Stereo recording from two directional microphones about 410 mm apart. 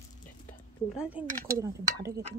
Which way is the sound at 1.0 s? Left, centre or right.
Centre.